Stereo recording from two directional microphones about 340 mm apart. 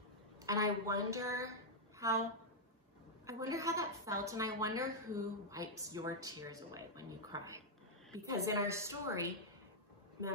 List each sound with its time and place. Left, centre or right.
0.4 s a woman's voice: centre
3.3 s a woman's voice: centre